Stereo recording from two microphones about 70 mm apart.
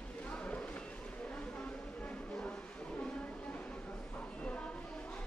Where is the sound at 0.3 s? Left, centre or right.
Centre.